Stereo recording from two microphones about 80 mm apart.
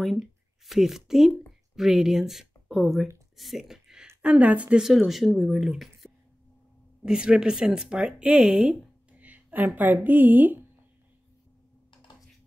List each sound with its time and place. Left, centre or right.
0.7 s speech: centre
3.3 s a sound: centre
4.2 s speech: centre
4.8 s speech: centre
9.2 s a sound: right
9.8 s a woman's voice: right